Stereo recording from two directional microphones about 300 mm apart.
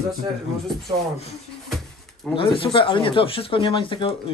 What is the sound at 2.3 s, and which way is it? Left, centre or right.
Speech, centre.